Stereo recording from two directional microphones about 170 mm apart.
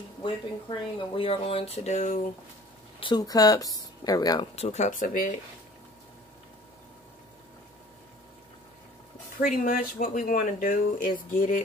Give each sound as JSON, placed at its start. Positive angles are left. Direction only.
{"t": 0.2, "sound": "speech", "side_deg": 30}
{"t": 3.0, "sound": "speech", "side_deg": 25}
{"t": 4.6, "sound": "speech", "side_deg": 40}
{"t": 9.4, "sound": "speech", "side_deg": 55}